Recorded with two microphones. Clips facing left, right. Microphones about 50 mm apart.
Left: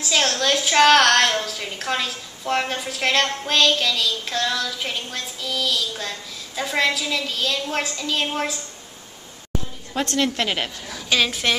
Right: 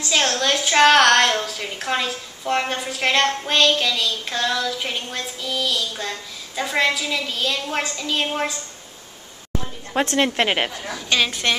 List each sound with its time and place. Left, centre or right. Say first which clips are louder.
0.0 s a woman's voice: right 1 dB; centre
10.1 s a woman's voice: right 2 dB; right
10.9 s a woman's voice: left 3 dB; centre